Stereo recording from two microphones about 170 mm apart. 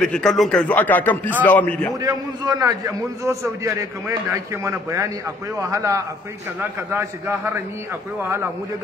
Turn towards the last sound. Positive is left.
turn(degrees=-15)  # may be behind; listen again after turning